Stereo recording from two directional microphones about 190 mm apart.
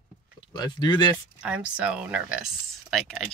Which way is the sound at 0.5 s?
25° left (ahead or behind).